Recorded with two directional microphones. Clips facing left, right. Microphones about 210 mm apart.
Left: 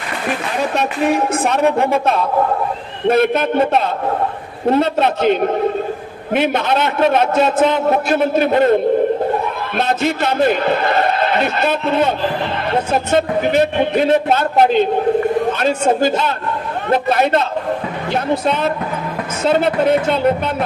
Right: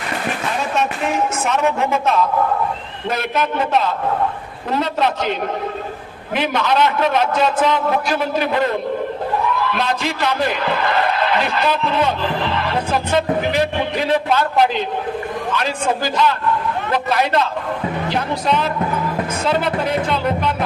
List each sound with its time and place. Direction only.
1.1 s a woman's voice: 35° left (ahead or behind)
3.1 s a man's voice: 50° left (ahead or behind)
6.5 s a man's voice: 50° left (ahead or behind)
7.4 s a woman's voice: 25° left (ahead or behind)
7.9 s a man's voice: 50° left (ahead or behind)
13.6 s a man's voice: 55° left (ahead or behind)
19.5 s a woman's voice: 25° left (ahead or behind)